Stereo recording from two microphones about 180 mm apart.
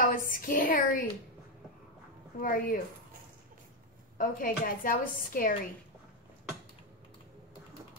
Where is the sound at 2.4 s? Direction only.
50° left (ahead or behind).